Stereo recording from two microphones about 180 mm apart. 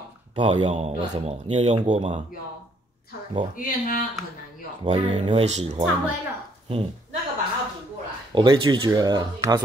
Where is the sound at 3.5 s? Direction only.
50° left (ahead or behind).